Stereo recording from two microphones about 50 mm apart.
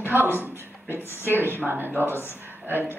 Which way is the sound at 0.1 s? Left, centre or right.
Right.